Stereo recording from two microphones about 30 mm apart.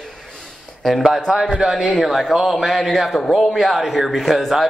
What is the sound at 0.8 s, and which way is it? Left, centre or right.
Speech, centre.